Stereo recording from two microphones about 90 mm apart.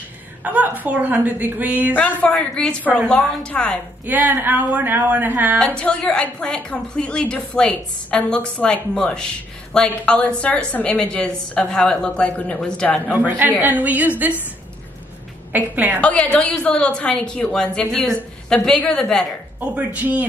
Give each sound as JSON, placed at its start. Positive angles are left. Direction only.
{"t": 0.4, "sound": "a woman's voice", "side_deg": -15}
{"t": 2.0, "sound": "a woman's voice", "side_deg": 20}
{"t": 2.3, "sound": "a woman's voice", "side_deg": 5}
{"t": 4.0, "sound": "speech", "side_deg": -20}
{"t": 5.8, "sound": "a woman's voice", "side_deg": 10}
{"t": 13.0, "sound": "speech", "side_deg": -20}
{"t": 15.5, "sound": "speech", "side_deg": -20}
{"t": 16.0, "sound": "a woman's voice", "side_deg": 10}
{"t": 19.6, "sound": "a woman's voice", "side_deg": -15}